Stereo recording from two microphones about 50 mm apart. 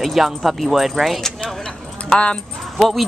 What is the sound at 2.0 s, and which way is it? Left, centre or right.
Speech, centre.